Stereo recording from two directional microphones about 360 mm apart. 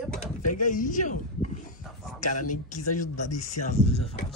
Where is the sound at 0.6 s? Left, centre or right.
Left.